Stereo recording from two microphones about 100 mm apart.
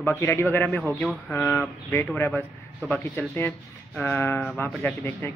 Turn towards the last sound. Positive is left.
turn(degrees=20)  # may be behind; listen again after turning